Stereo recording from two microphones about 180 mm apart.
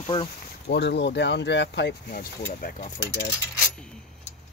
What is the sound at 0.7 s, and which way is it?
Speech, 70° left (ahead or behind).